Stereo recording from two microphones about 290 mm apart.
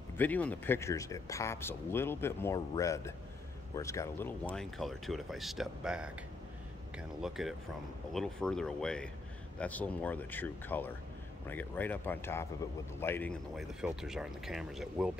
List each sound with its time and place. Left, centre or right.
0.2 s speech: centre
7.2 s speech: centre